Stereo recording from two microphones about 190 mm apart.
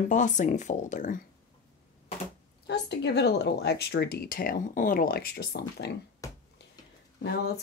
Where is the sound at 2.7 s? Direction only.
60° left (ahead or behind).